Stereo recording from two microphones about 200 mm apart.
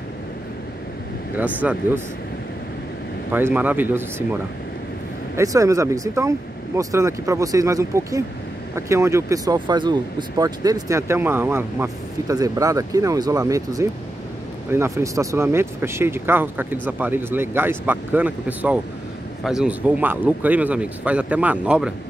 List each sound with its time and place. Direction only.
1.3 s speech: 10° right (ahead or behind)
3.3 s speech: 10° right (ahead or behind)